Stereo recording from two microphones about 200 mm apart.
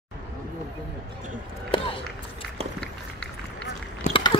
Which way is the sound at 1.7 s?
25° left (ahead or behind).